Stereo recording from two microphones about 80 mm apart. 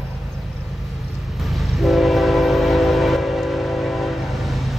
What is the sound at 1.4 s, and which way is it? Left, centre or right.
Train, centre.